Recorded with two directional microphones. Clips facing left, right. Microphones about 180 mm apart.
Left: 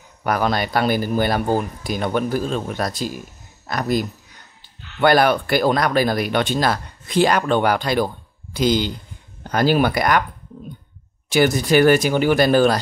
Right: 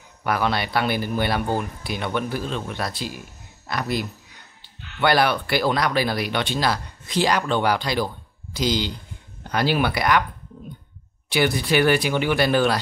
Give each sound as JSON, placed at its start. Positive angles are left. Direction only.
{"t": 0.2, "sound": "speech", "side_deg": 45}
{"t": 11.2, "sound": "speech", "side_deg": 45}